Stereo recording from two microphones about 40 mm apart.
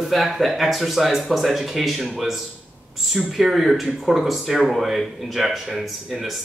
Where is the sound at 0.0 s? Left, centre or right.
Centre.